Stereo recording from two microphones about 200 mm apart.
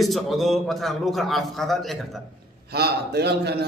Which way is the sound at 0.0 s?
Centre (ahead or behind).